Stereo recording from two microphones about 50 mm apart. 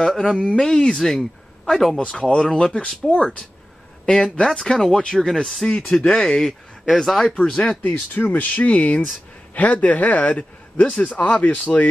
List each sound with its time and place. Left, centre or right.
0.0 s speech: centre
2.0 s speech: centre
4.0 s speech: centre
4.9 s speech: left
5.2 s speech: centre
6.0 s speech: left
6.9 s speech: centre
7.9 s speech: left